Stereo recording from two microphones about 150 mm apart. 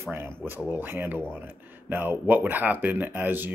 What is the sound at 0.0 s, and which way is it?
Speech, 15° right (ahead or behind).